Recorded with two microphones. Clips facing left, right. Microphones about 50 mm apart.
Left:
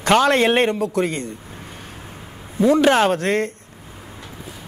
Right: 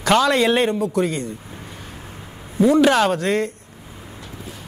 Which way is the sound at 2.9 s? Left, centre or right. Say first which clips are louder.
Left 1 dB; left.